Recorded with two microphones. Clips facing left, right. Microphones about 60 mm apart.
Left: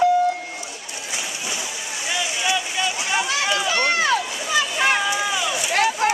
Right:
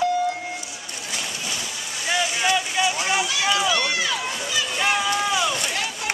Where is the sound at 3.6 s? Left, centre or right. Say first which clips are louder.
Left 3 dB; left.